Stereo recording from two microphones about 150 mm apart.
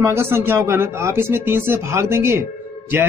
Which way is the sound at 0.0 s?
15° right (ahead or behind).